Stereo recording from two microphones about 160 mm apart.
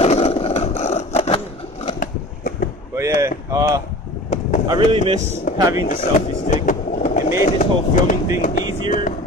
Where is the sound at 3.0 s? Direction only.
20° right (ahead or behind).